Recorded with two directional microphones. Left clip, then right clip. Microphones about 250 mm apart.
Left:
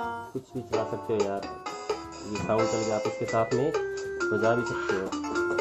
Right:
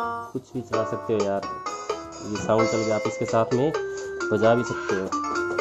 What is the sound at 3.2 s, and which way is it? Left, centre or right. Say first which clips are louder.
Speech: right 4 dB; right.